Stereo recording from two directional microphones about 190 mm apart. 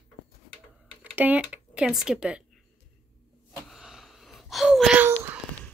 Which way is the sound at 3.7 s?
Centre (ahead or behind).